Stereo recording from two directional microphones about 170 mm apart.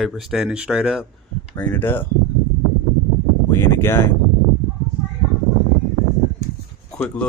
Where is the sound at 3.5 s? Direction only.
15° left (ahead or behind).